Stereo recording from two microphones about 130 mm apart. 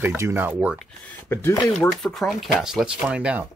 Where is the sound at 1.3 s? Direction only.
20° left (ahead or behind).